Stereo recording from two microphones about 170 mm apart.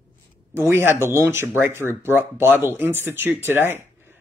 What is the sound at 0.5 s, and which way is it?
Speech, 15° right (ahead or behind).